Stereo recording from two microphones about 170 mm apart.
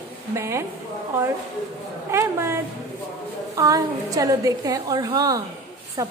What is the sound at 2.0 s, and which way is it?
A woman's voice, 15° right (ahead or behind).